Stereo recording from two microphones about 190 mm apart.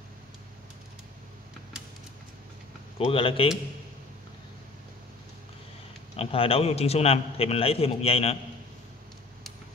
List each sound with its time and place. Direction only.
3.0 s a man's voice: 30° left (ahead or behind)
6.1 s a man's voice: 30° left (ahead or behind)